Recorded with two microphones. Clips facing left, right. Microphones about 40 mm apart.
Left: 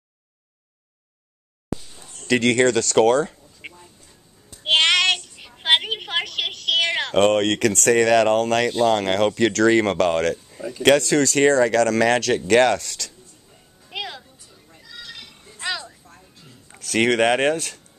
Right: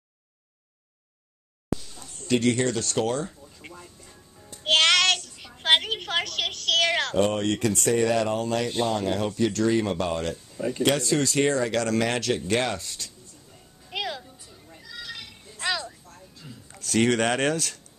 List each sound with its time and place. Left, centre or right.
1.8 s a sound: centre
2.4 s speech: left
3.6 s a sound: left
4.6 s child singing: centre
5.5 s a sound: centre
7.2 s speech: left
10.8 s speech: left
12.4 s speech: left
13.5 s music: centre
14.4 s bleat: centre
16.4 s a sound: centre
16.8 s speech: left